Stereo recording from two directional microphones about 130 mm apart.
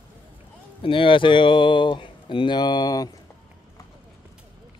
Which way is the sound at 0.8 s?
40° left (ahead or behind).